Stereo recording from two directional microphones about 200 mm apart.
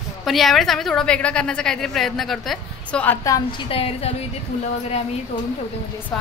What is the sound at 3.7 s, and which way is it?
Speech, 30° left (ahead or behind).